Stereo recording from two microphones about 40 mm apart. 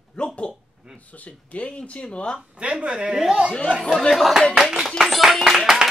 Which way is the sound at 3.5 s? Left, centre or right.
Left.